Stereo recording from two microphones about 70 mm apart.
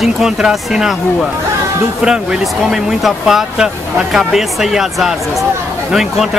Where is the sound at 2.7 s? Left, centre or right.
Centre.